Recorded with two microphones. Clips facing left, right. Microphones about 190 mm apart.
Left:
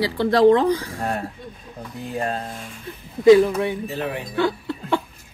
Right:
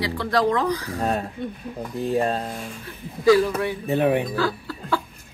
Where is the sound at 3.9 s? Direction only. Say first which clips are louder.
Right 7 dB; 60° right (ahead or behind).